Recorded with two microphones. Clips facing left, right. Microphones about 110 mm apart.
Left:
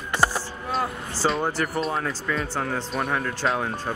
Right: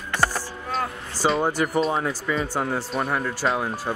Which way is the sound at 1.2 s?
10° right (ahead or behind).